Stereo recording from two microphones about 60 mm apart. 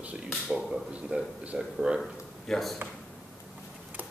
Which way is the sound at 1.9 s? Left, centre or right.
Centre.